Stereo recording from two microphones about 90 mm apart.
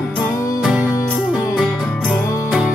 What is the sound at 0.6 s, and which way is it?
Music, 10° right (ahead or behind).